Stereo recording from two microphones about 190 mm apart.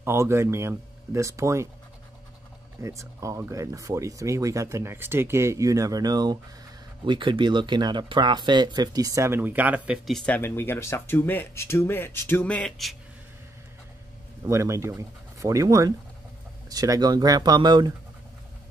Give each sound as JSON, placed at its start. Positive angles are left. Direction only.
{"t": 0.0, "sound": "speech", "side_deg": -15}
{"t": 2.8, "sound": "speech", "side_deg": -15}
{"t": 14.4, "sound": "speech", "side_deg": -15}